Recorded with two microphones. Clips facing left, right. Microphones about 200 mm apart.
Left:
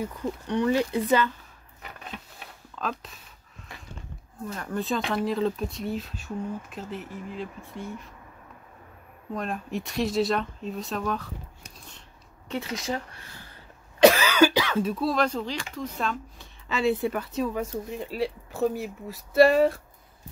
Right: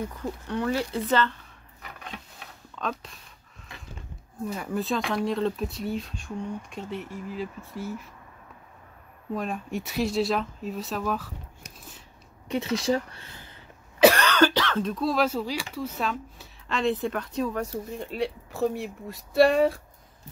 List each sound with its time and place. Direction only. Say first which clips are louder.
0.0 s speech: left 2 dB; 20° left (ahead or behind)
2.8 s speech: even; centre (ahead or behind)
4.5 s speech: right 1 dB; 10° right (ahead or behind)
9.3 s speech: right 1 dB; centre (ahead or behind)
12.7 s speech: right 8 dB; 35° right (ahead or behind)
13.9 s speech: left 1 dB; centre (ahead or behind)